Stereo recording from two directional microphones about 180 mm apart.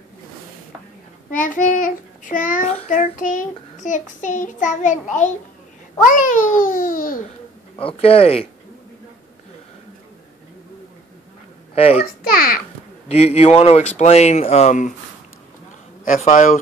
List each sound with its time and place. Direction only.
1.3 s child singing: 50° left (ahead or behind)
7.7 s speech: 30° left (ahead or behind)
11.7 s a child's voice: 35° left (ahead or behind)
12.2 s child singing: 55° left (ahead or behind)
13.1 s speech: 35° left (ahead or behind)
16.0 s child singing: 45° left (ahead or behind)